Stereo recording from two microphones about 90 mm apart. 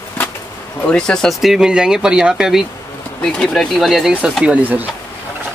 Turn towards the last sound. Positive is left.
turn(degrees=-20)  # may be behind; listen again after turning